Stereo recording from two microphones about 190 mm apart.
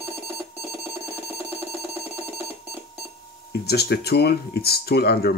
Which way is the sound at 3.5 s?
60° left (ahead or behind).